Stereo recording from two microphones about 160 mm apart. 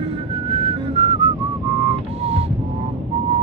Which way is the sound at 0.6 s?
35° right (ahead or behind).